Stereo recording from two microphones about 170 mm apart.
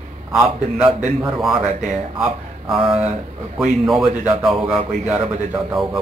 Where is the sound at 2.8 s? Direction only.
35° right (ahead or behind).